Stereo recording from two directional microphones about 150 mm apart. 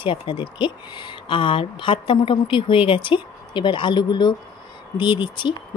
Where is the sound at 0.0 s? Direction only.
35° left (ahead or behind).